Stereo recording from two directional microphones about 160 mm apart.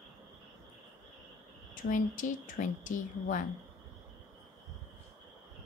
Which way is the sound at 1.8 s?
55° left (ahead or behind).